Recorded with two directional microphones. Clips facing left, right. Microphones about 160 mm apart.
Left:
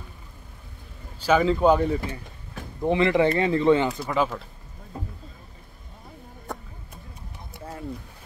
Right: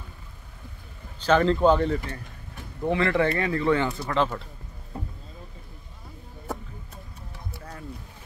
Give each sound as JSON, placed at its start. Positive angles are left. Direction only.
{"t": 1.2, "sound": "speech", "side_deg": 5}
{"t": 4.0, "sound": "speech", "side_deg": 5}
{"t": 7.5, "sound": "boat", "side_deg": 25}